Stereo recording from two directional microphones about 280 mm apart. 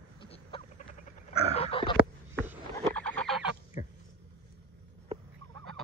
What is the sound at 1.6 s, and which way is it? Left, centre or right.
Dog, centre.